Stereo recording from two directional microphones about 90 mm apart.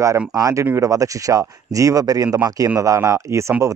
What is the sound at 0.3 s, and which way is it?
Speech, 40° right (ahead or behind).